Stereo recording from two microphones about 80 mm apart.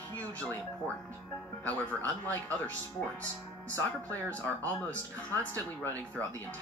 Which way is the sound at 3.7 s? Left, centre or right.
Left.